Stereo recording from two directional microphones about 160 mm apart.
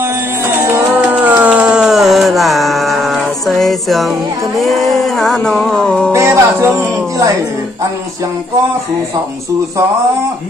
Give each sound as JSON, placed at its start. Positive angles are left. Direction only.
{"t": 0.7, "sound": "music", "side_deg": -15}
{"t": 6.1, "sound": "music", "side_deg": -15}